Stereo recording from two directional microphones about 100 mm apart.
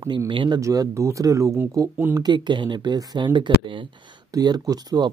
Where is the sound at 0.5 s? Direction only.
30° right (ahead or behind).